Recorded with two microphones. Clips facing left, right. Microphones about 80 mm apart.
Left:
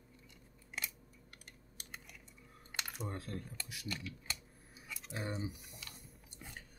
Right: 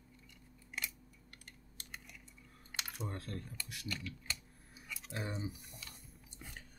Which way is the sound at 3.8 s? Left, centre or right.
Centre.